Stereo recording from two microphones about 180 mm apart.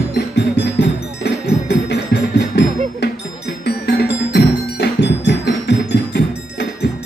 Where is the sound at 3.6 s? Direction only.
65° left (ahead or behind).